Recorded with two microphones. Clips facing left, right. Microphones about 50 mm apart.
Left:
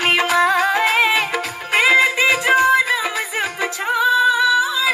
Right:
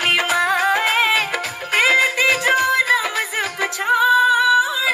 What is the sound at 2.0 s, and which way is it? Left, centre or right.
Music, left.